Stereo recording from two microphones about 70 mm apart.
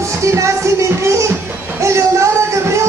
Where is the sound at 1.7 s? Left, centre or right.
Right.